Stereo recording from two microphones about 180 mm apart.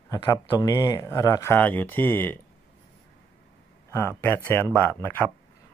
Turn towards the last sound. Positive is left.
turn(degrees=10)  # may be behind; listen again after turning